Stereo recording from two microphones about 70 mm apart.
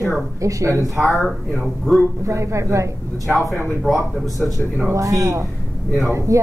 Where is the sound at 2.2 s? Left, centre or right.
Right.